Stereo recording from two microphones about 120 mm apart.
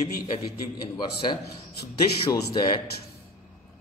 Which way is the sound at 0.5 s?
40° left (ahead or behind).